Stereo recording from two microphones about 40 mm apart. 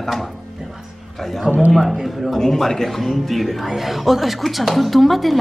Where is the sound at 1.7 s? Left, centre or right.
Centre.